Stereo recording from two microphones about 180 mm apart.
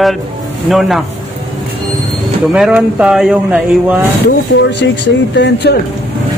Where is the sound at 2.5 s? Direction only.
5° right (ahead or behind).